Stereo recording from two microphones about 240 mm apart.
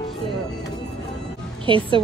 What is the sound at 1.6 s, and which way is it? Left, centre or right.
Speech, right.